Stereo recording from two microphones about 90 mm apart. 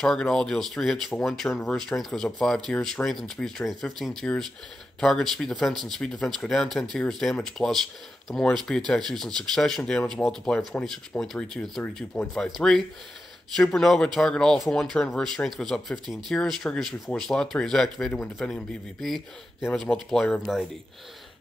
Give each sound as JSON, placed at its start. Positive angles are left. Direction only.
{"t": 0.0, "sound": "speech", "side_deg": 5}
{"t": 12.4, "sound": "speech", "side_deg": 0}